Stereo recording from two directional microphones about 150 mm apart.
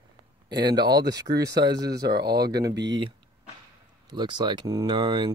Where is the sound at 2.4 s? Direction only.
25° right (ahead or behind).